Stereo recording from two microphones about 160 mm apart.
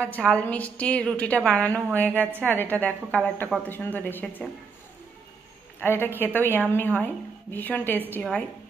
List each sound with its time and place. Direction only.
0.0 s a woman's voice: 5° left (ahead or behind)
5.8 s a woman's voice: 15° left (ahead or behind)